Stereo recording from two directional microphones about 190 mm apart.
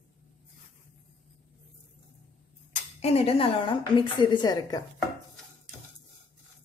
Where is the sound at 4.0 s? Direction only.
20° left (ahead or behind).